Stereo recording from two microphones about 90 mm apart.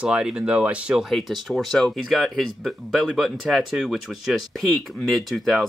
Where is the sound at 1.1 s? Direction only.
Centre (ahead or behind).